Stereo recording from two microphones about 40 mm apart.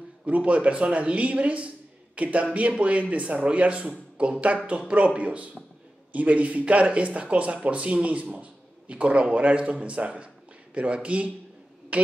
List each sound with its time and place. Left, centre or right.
0.2 s speech: right